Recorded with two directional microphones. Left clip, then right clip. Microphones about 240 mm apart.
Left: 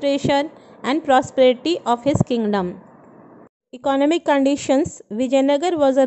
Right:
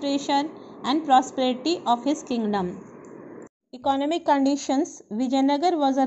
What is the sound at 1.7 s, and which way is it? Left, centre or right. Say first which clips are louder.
Speech: left 4 dB; left.